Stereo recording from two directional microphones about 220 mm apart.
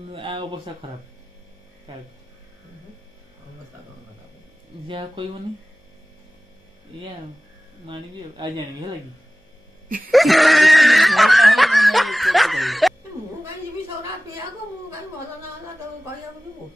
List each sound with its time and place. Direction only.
0.1 s speech: 25° right (ahead or behind)
4.8 s speech: 20° right (ahead or behind)
7.8 s speech: 20° right (ahead or behind)
10.1 s laughter: centre (ahead or behind)